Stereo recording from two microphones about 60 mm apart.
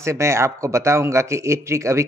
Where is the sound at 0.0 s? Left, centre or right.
Right.